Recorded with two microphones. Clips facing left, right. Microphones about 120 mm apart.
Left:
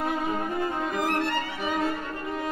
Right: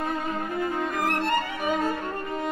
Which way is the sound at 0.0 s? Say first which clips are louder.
Left 1 dB; 5° left (ahead or behind).